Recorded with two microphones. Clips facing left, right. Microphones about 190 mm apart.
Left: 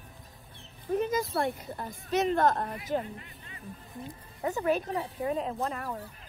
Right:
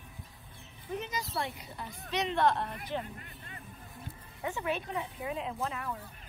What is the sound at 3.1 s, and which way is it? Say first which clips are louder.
Vehicle: left 1 dB; 45° right (ahead or behind).